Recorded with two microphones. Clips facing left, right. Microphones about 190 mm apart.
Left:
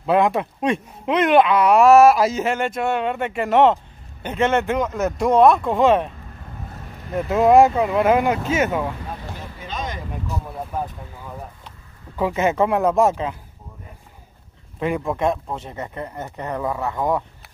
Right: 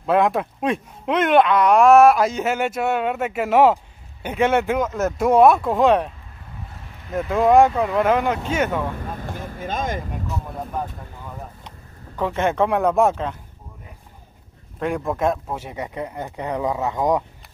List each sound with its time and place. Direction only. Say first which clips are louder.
0.0 s speech: even; centre (ahead or behind)
7.2 s speech: left 1 dB; 5° left (ahead or behind)
9.2 s vehicle: right 4 dB; 50° right (ahead or behind)
12.2 s speech: left 1 dB; 5° left (ahead or behind)
14.8 s speech: even; centre (ahead or behind); by 17.2 s 15° right (ahead or behind)